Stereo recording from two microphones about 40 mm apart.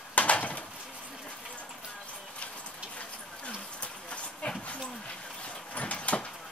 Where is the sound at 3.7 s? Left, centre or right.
Left.